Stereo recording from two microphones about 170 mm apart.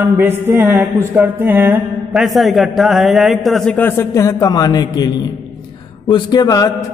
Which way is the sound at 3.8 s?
15° left (ahead or behind).